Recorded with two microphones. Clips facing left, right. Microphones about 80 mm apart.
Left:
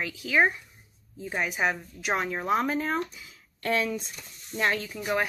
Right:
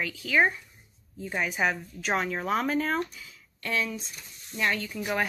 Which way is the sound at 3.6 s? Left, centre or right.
Left.